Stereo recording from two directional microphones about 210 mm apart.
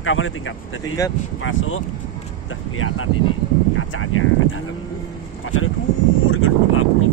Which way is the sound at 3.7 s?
80° left.